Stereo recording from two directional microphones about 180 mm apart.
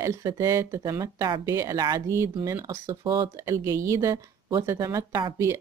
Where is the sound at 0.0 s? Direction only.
20° right (ahead or behind).